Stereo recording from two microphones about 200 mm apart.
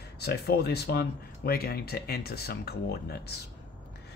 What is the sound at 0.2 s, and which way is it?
Speech, 55° left (ahead or behind).